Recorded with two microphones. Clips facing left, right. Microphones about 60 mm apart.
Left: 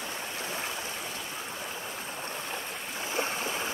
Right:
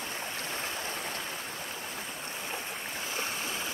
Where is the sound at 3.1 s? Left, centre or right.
Left.